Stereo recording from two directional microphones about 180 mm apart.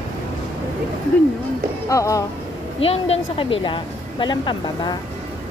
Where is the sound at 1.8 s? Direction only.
15° left (ahead or behind).